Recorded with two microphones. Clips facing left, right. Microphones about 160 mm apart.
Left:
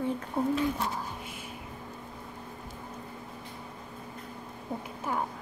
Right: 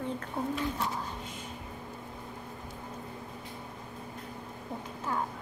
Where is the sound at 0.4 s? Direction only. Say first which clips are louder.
Left 5 dB; 25° left (ahead or behind).